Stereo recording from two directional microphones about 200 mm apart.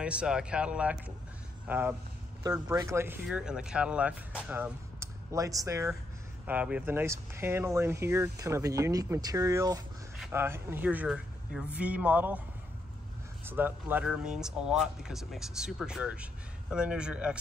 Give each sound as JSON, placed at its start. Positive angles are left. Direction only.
{"t": 0.0, "sound": "speech", "side_deg": -5}
{"t": 13.5, "sound": "speech", "side_deg": -10}